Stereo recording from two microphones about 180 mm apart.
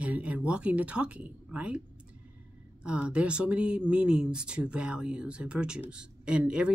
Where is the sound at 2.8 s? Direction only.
5° right (ahead or behind).